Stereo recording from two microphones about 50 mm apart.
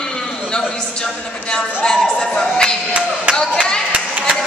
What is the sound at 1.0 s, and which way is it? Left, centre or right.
Speech, centre.